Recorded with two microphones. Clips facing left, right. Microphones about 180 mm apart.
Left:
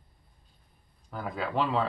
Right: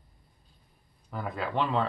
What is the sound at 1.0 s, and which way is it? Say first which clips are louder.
Speech: even; centre (ahead or behind).